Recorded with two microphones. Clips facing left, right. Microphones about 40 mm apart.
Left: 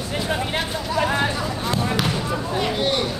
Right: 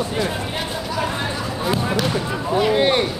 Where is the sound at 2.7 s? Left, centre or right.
Right.